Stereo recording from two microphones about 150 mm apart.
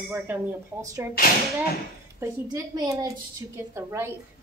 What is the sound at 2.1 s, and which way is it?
A woman's voice, 25° right (ahead or behind).